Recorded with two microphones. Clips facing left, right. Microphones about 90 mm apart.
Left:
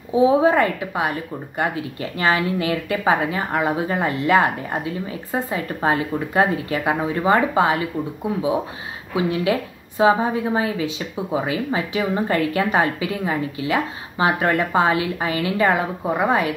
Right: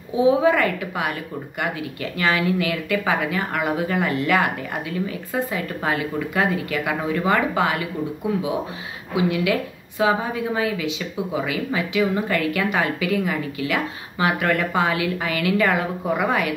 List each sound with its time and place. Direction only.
0.1 s a woman's voice: 30° left (ahead or behind)
9.1 s a woman's voice: 30° left (ahead or behind)